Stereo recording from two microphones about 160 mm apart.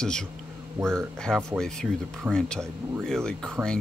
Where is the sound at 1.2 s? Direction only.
5° left (ahead or behind).